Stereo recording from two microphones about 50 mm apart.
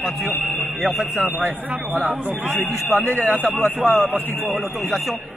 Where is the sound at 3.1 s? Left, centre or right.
Left.